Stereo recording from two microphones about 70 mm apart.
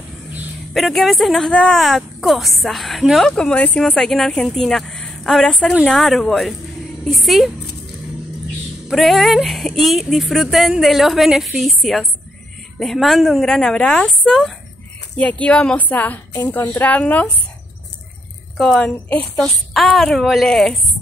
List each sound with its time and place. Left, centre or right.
0.7 s a woman's voice: centre
1.8 s a woman's voice: centre
3.3 s a woman's voice: centre
8.8 s a woman's voice: centre
15.1 s a woman's voice: centre
18.6 s a woman's voice: centre
19.3 s a woman's voice: centre